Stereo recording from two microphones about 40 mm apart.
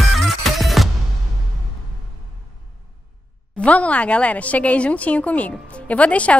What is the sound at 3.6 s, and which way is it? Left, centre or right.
A woman's voice, left.